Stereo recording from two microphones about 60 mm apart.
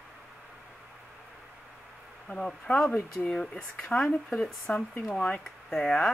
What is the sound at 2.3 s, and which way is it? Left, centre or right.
Speech, centre.